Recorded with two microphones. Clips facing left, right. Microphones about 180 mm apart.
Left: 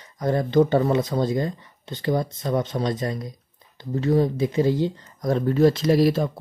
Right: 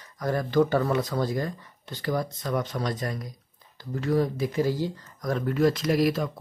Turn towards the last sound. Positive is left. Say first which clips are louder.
# left 5 dB
turn(degrees=30)  # may be behind; listen again after turning